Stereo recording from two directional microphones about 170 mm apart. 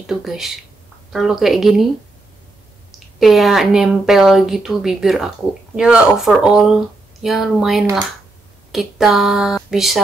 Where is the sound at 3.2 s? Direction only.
Centre (ahead or behind).